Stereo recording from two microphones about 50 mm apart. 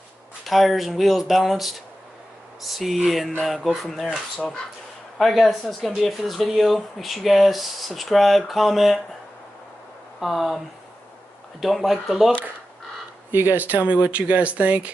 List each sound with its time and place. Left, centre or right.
0.5 s speech: centre
5.2 s speech: centre
10.2 s speech: centre
11.6 s speech: centre
13.3 s speech: right